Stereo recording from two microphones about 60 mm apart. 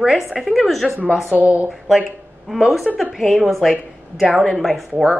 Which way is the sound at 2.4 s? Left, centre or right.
Centre.